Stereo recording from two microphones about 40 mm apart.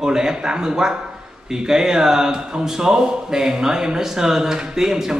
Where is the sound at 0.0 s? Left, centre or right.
Centre.